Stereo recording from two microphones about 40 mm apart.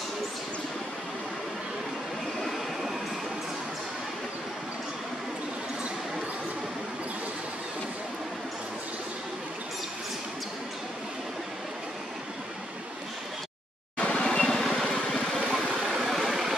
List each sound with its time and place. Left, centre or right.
2.4 s vehicle: centre
13.9 s vehicle: left
15.5 s vehicle: centre